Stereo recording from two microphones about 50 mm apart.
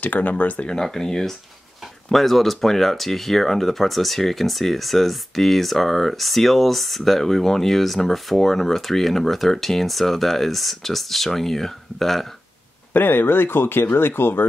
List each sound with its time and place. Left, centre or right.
0.0 s speech: left
0.8 s speech: centre
12.9 s speech: left